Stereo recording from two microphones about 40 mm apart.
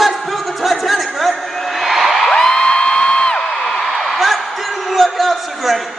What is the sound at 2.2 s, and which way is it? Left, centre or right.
Music, centre.